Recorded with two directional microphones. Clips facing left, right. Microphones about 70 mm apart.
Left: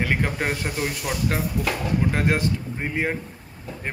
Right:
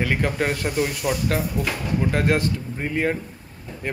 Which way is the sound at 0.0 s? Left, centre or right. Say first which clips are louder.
Right 2 dB; left.